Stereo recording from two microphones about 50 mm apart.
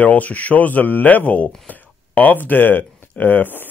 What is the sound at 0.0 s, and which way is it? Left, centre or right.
Speech, left.